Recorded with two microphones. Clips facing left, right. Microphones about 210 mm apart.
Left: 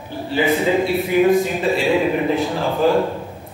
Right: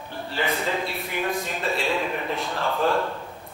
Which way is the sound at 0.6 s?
Centre (ahead or behind).